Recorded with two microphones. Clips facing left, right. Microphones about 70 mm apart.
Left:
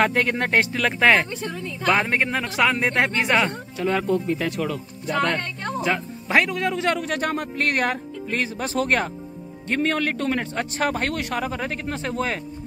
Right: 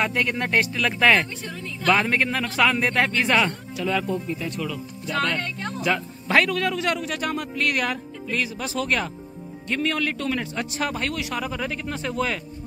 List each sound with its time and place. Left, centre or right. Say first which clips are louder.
0.0 s speech: left 3 dB; left
4.1 s speech: left 5 dB; left
4.6 s speech: left 3 dB; left
5.8 s speech: even; left
7.0 s a man's voice: left 2 dB; left